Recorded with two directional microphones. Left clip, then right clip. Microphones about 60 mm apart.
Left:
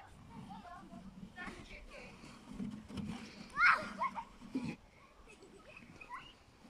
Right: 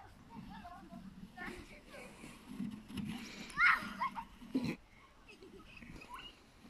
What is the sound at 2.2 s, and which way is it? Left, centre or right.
Vehicle, left.